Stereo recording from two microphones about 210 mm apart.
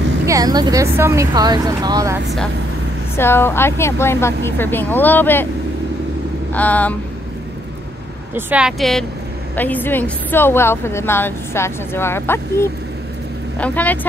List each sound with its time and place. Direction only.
0.3 s speech: 20° right (ahead or behind)
3.2 s speech: 10° left (ahead or behind)
6.5 s speech: 5° left (ahead or behind)
8.4 s a woman's voice: 5° right (ahead or behind)